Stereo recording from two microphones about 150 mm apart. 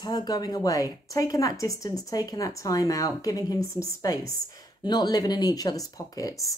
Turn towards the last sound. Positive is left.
turn(degrees=25)  # may be behind; listen again after turning